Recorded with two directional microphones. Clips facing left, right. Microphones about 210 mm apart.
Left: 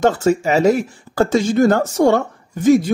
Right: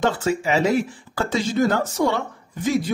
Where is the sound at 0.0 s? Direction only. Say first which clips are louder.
Left 6 dB; 45° left (ahead or behind).